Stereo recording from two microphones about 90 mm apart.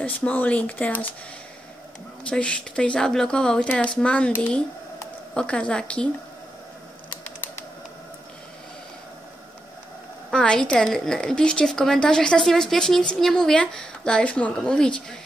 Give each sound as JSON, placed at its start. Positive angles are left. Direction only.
{"t": 0.0, "sound": "a woman's voice", "side_deg": 20}
{"t": 2.2, "sound": "a woman's voice", "side_deg": 10}
{"t": 10.3, "sound": "a woman's voice", "side_deg": 10}